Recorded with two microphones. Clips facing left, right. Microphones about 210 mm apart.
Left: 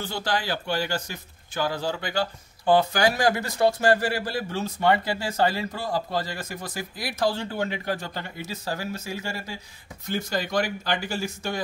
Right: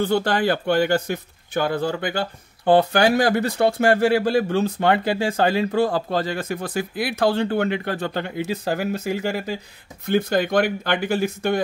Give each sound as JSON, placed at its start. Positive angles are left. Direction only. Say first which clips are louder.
{"t": 0.0, "sound": "speech", "louder": "right 9 dB", "side_deg": -55}